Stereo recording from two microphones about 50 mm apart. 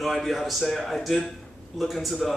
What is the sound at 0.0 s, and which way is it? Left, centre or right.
Speech, centre.